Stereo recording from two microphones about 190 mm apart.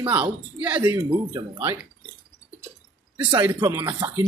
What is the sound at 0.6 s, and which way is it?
Speech, 10° right (ahead or behind).